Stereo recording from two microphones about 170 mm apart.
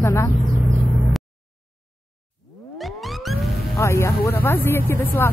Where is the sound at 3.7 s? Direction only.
15° left (ahead or behind).